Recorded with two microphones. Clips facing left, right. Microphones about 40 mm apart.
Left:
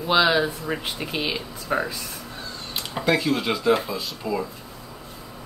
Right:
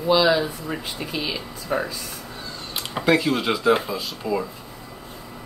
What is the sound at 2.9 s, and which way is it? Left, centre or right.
Speech, centre.